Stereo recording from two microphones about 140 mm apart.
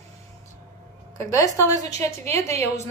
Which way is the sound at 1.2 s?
20° left (ahead or behind).